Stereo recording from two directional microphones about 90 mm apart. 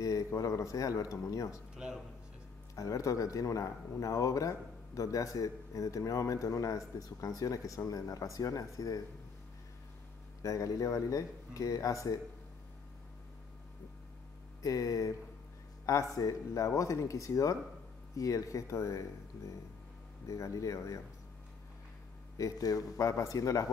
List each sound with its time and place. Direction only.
0.0 s a man's voice: 40° left (ahead or behind)
1.8 s speech: 5° right (ahead or behind)
2.7 s a man's voice: 40° left (ahead or behind)
10.4 s a man's voice: 40° left (ahead or behind)
14.6 s a man's voice: 40° left (ahead or behind)
22.4 s a man's voice: 45° left (ahead or behind)